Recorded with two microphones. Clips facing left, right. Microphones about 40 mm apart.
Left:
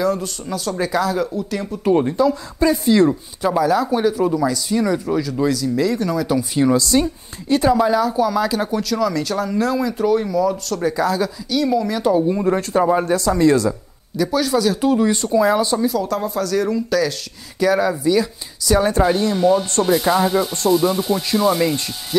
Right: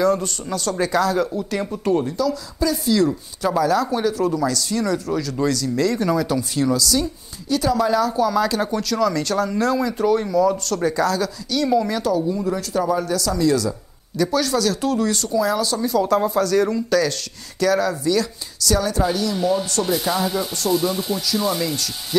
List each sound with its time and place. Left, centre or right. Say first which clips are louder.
0.0 s speech: right 1 dB; centre
2.0 s speech: left 5 dB; left
3.4 s speech: left 2 dB; centre
6.2 s speech: left 3 dB; centre
6.7 s speech: left 4 dB; left
7.7 s speech: left 2 dB; centre
12.0 s speech: left 4 dB; left
14.1 s speech: left 2 dB; centre; by 15.8 s left
16.0 s speech: right 3 dB; centre
17.6 s speech: left 2 dB; centre
18.9 s speech: left 4 dB; left
19.3 s speech: left 4 dB; centre